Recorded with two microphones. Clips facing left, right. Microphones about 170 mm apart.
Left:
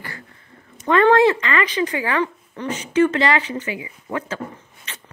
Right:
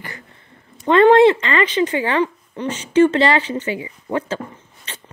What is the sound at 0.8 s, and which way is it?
Speech, 25° right (ahead or behind).